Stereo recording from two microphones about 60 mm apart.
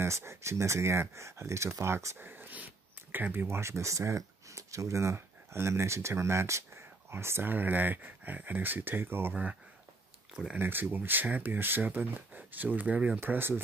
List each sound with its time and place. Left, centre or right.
0.0 s speech: right
2.1 s a sound: right
3.1 s speech: right
3.4 s speech: right
10.6 s speech: right
13.2 s speech: right